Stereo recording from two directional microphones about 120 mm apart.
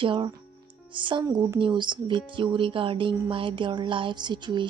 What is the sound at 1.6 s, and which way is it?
Speech, 40° right (ahead or behind).